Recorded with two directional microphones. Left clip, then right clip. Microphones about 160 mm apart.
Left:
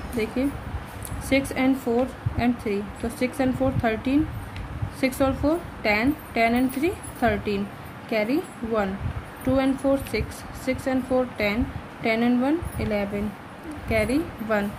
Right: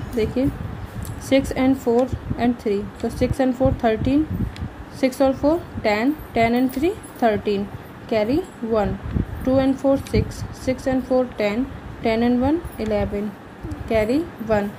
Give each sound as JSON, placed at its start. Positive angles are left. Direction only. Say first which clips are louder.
{"t": 1.3, "sound": "a woman's voice", "louder": "right 4 dB", "side_deg": -20}